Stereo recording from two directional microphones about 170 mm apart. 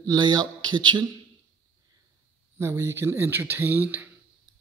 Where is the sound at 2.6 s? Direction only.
15° right (ahead or behind).